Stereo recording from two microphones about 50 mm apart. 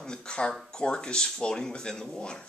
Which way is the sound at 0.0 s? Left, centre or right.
Centre.